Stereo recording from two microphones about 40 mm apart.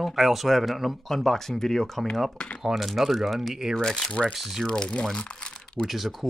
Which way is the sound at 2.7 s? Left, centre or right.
Centre.